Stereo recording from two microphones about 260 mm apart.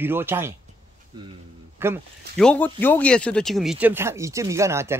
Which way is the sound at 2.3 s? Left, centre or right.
Centre.